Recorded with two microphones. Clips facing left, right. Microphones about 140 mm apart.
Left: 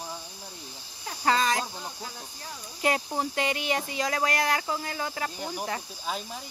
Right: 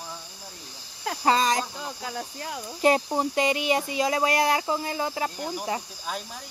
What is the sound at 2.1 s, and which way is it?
Cricket, 75° right (ahead or behind).